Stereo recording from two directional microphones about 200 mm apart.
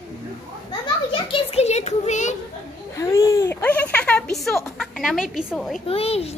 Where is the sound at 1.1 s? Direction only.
30° left (ahead or behind).